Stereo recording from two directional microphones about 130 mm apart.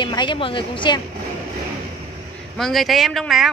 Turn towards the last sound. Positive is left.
turn(degrees=0)  # may be behind; listen again after turning